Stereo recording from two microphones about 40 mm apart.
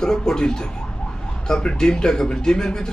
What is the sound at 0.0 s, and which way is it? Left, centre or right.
Speech, centre.